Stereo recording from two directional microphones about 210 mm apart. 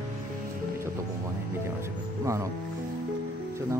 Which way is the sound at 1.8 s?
15° right (ahead or behind).